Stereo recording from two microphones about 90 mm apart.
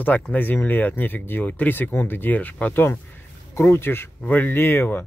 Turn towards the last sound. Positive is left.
turn(degrees=25)  # may be behind; listen again after turning